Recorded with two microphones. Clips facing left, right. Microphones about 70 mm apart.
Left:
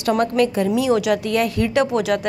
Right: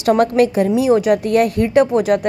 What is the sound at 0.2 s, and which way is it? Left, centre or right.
A woman's voice, right.